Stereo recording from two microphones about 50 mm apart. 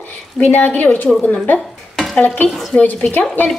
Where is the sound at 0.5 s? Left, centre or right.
Left.